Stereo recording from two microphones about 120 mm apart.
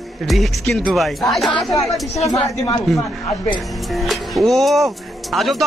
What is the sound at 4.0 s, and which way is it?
Speech, centre (ahead or behind).